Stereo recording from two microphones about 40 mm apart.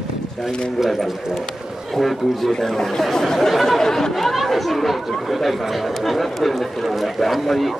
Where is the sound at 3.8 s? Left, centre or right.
Centre.